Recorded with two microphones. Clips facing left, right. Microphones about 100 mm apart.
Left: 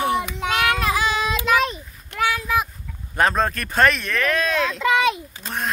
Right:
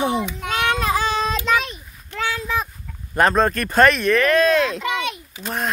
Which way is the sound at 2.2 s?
25° right (ahead or behind).